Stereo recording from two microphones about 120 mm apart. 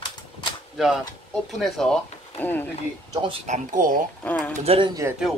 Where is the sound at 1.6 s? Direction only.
5° left (ahead or behind).